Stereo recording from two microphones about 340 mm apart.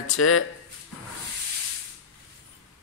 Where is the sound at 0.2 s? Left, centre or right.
Left.